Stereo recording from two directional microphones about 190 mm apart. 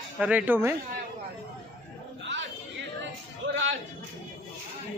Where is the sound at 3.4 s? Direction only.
75° right (ahead or behind).